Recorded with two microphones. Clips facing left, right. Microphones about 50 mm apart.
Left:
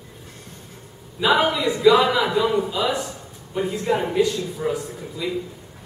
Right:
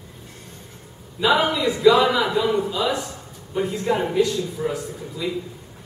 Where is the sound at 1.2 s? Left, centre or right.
Centre.